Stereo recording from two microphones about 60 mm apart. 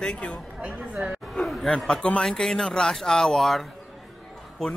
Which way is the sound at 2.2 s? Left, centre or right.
Centre.